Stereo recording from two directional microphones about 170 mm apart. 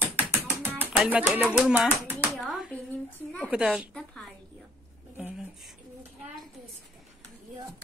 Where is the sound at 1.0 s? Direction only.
10° right (ahead or behind).